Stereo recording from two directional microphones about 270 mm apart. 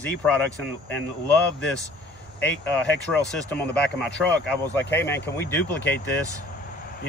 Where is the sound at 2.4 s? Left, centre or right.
Centre.